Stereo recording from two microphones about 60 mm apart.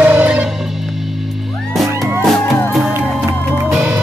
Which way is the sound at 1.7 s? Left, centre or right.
Centre.